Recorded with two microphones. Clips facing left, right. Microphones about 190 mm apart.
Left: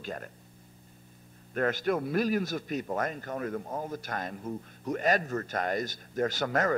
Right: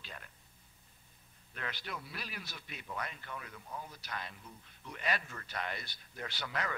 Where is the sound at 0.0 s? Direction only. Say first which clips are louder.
Left 14 dB; 45° left (ahead or behind).